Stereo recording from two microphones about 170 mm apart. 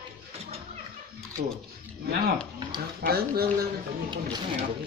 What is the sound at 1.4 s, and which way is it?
Speech, 45° right (ahead or behind).